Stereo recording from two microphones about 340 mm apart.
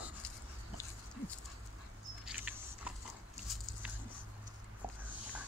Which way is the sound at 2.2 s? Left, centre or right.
Centre.